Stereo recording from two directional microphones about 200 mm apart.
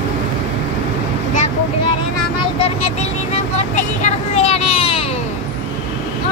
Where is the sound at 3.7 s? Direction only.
35° left (ahead or behind).